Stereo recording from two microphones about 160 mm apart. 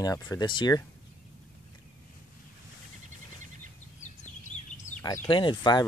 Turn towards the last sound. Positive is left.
turn(degrees=30)  # may be behind; listen again after turning